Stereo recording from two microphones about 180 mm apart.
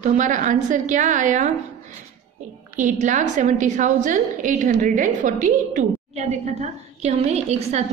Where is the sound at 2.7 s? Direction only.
45° right (ahead or behind).